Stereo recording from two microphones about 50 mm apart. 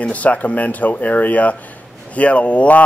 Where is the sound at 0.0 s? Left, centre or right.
Left.